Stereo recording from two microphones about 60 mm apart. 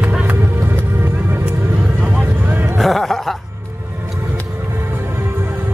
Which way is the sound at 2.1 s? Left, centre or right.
Right.